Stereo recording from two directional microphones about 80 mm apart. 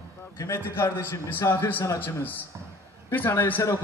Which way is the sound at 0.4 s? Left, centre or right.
Left.